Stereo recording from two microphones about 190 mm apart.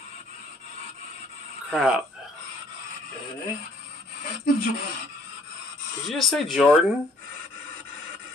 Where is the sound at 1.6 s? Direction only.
Centre (ahead or behind).